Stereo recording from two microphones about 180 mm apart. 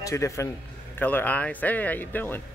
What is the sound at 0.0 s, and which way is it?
A man's voice, 15° left (ahead or behind).